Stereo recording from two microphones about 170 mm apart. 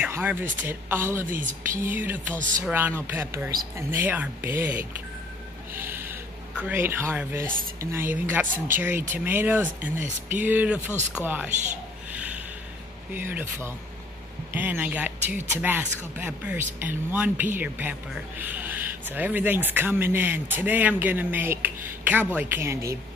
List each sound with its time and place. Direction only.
0.0 s speech: 10° right (ahead or behind)
2.3 s speech: 50° right (ahead or behind)
2.6 s speech: 10° right (ahead or behind)
5.8 s a sound: 15° right (ahead or behind)
7.8 s speech: 15° right (ahead or behind)
12.1 s snort: 10° right (ahead or behind)
13.1 s speech: 10° right (ahead or behind)